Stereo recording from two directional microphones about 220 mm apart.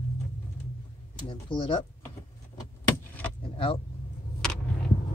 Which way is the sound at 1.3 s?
25° left (ahead or behind).